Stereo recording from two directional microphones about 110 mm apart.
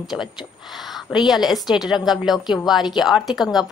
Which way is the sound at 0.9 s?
Centre (ahead or behind).